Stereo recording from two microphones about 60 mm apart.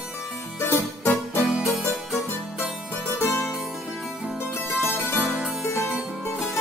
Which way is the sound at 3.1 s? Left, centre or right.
Left.